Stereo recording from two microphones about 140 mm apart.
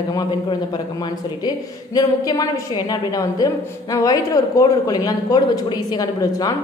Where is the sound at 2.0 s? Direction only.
25° left (ahead or behind).